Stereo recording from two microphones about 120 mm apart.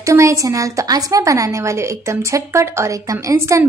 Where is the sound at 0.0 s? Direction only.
25° right (ahead or behind).